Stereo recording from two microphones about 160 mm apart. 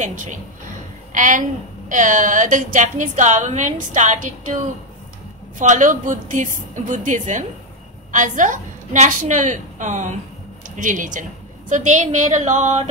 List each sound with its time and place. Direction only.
0.0 s a woman's voice: 50° right (ahead or behind)
5.6 s a woman's voice: 50° right (ahead or behind)